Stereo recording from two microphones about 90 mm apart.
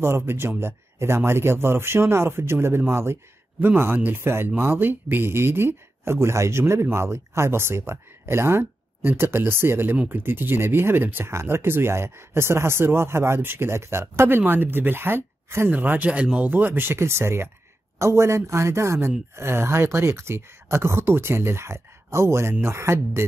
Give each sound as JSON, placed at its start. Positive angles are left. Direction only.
{"t": 0.0, "sound": "speech", "side_deg": -30}